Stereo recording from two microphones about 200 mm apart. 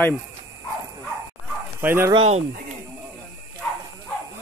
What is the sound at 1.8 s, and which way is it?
Speech, 10° right (ahead or behind).